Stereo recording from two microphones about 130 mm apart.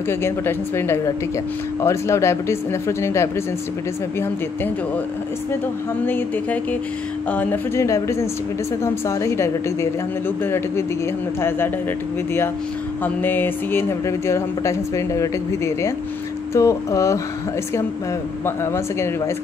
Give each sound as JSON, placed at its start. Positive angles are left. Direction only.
{"t": 0.1, "sound": "speech", "side_deg": 20}
{"t": 6.0, "sound": "a sound", "side_deg": 15}
{"t": 7.2, "sound": "speech", "side_deg": 15}
{"t": 13.0, "sound": "speech", "side_deg": 15}
{"t": 18.4, "sound": "speech", "side_deg": 20}